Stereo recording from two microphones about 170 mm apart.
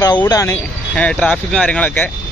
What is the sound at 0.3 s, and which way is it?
Speech, 20° left (ahead or behind).